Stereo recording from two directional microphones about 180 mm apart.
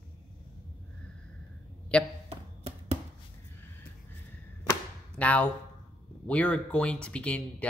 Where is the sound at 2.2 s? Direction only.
35° right (ahead or behind).